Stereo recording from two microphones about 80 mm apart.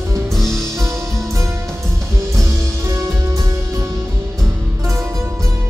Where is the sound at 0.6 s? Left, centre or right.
Right.